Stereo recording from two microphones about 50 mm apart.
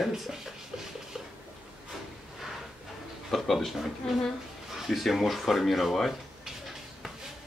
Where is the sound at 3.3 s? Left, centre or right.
Centre.